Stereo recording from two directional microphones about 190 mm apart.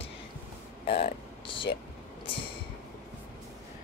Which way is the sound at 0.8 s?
30° left (ahead or behind).